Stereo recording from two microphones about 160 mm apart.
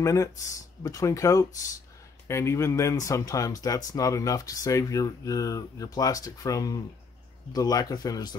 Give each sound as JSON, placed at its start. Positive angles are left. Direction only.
{"t": 0.0, "sound": "speech", "side_deg": 20}